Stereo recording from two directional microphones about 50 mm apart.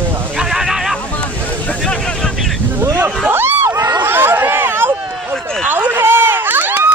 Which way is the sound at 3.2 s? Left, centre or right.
Right.